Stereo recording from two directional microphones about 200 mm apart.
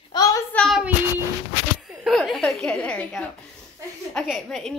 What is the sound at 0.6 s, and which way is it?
Speech, centre (ahead or behind).